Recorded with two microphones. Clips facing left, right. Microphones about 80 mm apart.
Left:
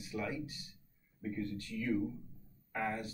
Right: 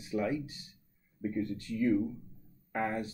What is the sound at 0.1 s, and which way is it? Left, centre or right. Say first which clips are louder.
Speech: right 7 dB; right.